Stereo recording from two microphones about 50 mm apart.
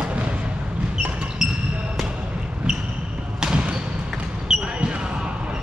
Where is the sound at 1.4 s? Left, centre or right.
Centre.